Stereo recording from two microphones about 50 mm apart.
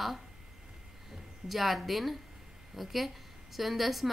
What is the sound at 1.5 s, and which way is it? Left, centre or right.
A woman's voice, centre.